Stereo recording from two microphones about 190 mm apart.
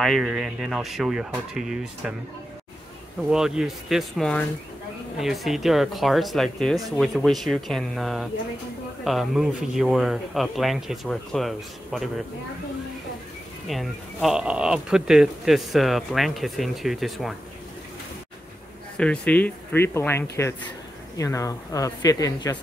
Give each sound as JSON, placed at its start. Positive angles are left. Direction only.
{"t": 0.0, "sound": "speech", "side_deg": 0}
{"t": 3.3, "sound": "speech", "side_deg": -5}
{"t": 13.7, "sound": "speech", "side_deg": 0}
{"t": 18.9, "sound": "speech", "side_deg": 5}